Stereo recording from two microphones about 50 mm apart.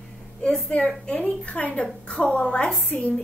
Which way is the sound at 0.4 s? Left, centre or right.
Left.